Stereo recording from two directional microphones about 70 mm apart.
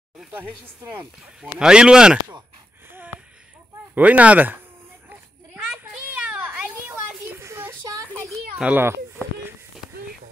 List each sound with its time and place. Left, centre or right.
1.4 s speech: centre
3.9 s speech: right
5.9 s children playing: centre
6.9 s a sound: right
8.6 s speech: centre